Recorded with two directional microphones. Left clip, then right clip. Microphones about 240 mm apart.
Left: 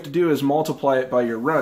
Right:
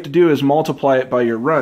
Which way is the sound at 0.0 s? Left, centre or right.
Right.